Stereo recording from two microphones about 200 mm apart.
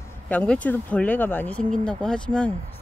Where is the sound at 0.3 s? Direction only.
5° left (ahead or behind).